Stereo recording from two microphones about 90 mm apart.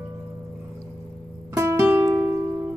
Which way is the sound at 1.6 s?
30° right (ahead or behind).